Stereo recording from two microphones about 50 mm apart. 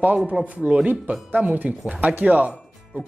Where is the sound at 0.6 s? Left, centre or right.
Right.